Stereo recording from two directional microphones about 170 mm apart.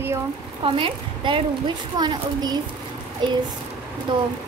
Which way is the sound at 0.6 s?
30° right (ahead or behind).